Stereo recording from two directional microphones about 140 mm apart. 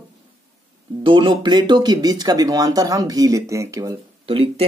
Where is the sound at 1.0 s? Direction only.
35° right (ahead or behind).